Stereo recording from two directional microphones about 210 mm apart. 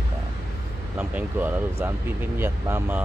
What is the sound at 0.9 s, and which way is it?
Speech, 10° right (ahead or behind).